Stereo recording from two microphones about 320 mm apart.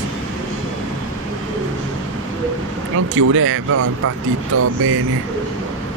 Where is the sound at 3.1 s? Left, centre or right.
Right.